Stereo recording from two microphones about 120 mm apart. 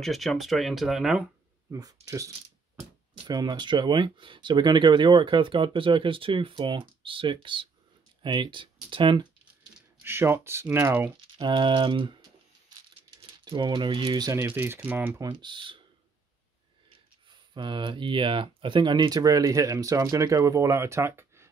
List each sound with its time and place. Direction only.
0.0 s speech: centre (ahead or behind)
1.7 s speech: 30° right (ahead or behind)
10.0 s speech: 20° right (ahead or behind)
11.1 s speech: 45° right (ahead or behind)
13.4 s speech: 40° right (ahead or behind)
14.3 s speech: 20° right (ahead or behind)
15.4 s speech: 40° right (ahead or behind)
17.3 s speech: 40° right (ahead or behind); by 21.5 s 20° right (ahead or behind)